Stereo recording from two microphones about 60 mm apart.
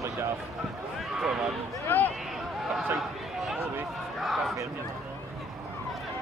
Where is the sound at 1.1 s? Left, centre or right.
Centre.